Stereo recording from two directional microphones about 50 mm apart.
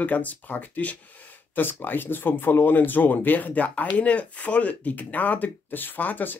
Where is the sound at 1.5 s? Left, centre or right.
Left.